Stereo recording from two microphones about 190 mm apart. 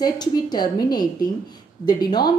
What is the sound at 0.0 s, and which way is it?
A woman's voice, 20° left (ahead or behind).